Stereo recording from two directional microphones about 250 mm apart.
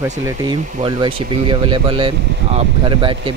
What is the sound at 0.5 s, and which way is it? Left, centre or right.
Speech, centre.